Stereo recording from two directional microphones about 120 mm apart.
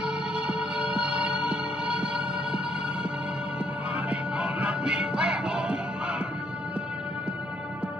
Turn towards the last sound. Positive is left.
turn(degrees=-10)  # may be behind; listen again after turning